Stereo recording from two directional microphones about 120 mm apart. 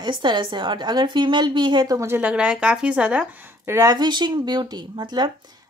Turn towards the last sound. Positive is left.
turn(degrees=-35)  # may be behind; listen again after turning